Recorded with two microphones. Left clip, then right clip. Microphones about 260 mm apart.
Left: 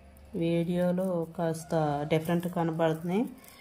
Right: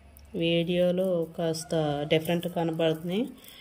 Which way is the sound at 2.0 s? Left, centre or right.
Left.